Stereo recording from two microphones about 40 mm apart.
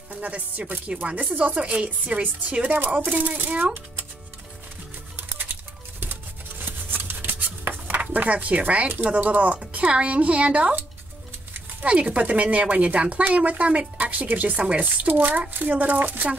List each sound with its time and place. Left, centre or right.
0.1 s speech: right
3.2 s speech: right
5.1 s music: right
6.6 s a sound: right
7.6 s speech: right
11.8 s speech: right